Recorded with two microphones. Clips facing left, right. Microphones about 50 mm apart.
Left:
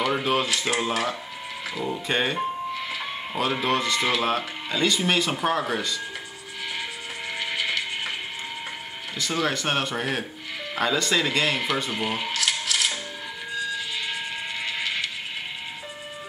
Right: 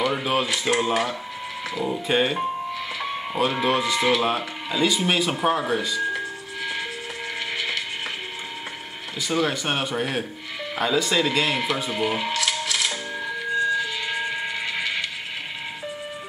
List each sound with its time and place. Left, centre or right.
0.1 s speech: centre
3.6 s speech: centre
9.2 s speech: centre
12.3 s coin: centre
13.6 s music: right